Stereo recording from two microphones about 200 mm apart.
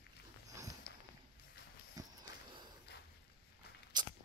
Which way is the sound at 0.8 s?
55° left (ahead or behind).